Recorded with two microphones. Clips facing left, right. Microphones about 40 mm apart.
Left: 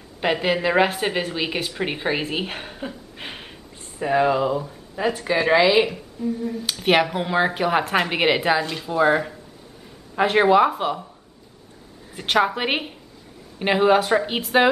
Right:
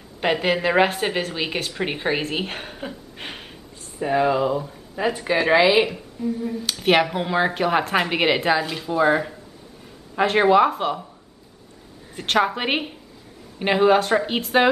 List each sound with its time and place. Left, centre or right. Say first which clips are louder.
0.2 s a woman's voice: even; centre
12.2 s a woman's voice: left 1 dB; centre